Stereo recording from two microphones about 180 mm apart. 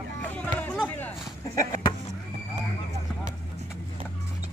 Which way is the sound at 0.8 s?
10° left (ahead or behind).